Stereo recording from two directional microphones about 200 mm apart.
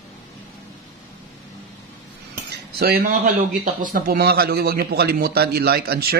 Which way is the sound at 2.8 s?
45° right (ahead or behind).